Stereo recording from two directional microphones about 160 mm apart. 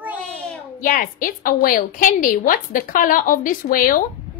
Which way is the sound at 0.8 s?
60° left (ahead or behind).